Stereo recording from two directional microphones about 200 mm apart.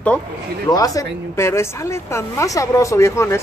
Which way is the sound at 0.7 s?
15° left (ahead or behind).